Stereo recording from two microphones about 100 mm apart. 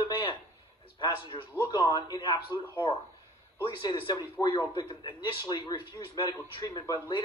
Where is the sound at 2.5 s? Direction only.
35° right (ahead or behind).